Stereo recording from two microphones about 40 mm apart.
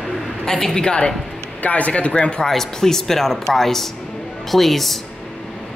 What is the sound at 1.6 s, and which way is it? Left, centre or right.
Speech, left.